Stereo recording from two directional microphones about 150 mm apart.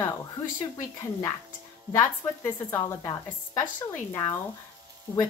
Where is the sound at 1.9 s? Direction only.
15° left (ahead or behind).